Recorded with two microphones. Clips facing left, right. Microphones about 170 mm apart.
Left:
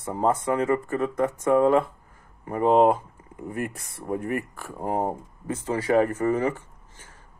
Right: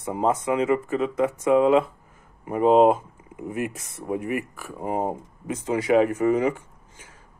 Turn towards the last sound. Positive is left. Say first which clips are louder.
# right 1 dB
turn(degrees=-15)  # may be behind; listen again after turning